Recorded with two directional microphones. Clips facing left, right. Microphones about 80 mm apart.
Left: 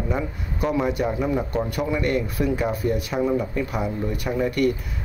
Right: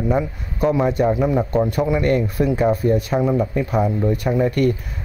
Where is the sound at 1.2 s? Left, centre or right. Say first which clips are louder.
Right 6 dB; right.